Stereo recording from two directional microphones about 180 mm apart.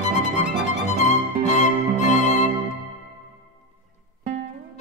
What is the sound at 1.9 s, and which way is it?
Music, 40° left (ahead or behind).